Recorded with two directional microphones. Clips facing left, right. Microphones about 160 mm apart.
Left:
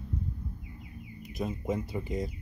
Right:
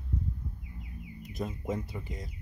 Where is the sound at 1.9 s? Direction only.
20° left (ahead or behind).